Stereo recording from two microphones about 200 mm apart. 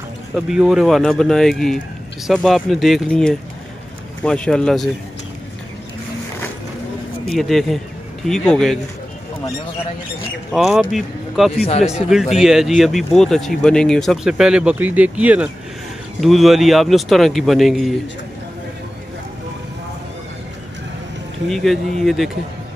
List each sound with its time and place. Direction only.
0.3 s speech: 5° right (ahead or behind)
7.2 s a man's voice: centre (ahead or behind)
10.5 s speech: centre (ahead or behind)
21.5 s speech: centre (ahead or behind)